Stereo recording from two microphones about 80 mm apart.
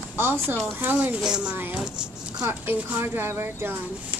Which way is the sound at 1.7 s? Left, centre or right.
Centre.